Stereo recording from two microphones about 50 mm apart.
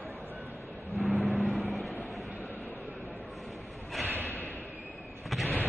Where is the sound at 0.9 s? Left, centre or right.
Centre.